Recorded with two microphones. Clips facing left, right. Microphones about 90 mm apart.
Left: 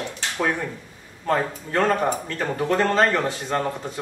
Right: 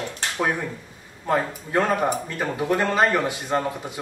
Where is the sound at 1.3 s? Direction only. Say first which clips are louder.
Even; 10° right (ahead or behind).